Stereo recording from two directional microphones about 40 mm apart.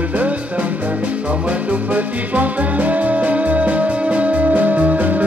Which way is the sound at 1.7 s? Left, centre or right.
Right.